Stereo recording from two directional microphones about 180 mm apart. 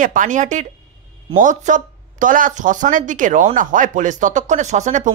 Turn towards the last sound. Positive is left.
turn(degrees=-40)  # may be behind; listen again after turning